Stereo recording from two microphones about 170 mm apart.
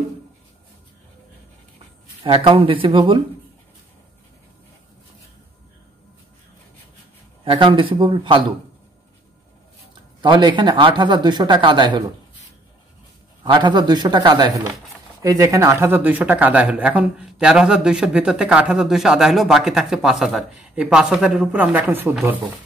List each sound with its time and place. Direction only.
2.2 s speech: 30° right (ahead or behind)
7.4 s speech: 30° right (ahead or behind)
10.2 s speech: 30° right (ahead or behind)
13.4 s speech: 25° right (ahead or behind); by 22.4 s 10° right (ahead or behind)